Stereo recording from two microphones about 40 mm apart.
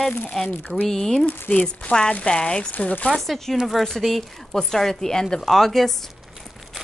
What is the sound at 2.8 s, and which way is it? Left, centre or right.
Speech, left.